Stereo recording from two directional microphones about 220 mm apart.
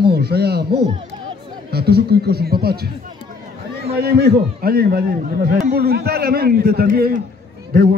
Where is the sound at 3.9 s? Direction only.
45° right (ahead or behind).